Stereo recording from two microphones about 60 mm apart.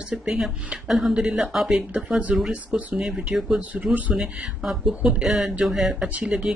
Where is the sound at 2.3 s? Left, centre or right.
Centre.